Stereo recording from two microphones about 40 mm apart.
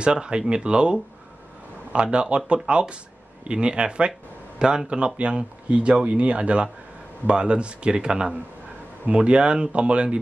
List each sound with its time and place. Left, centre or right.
0.0 s a man's voice: right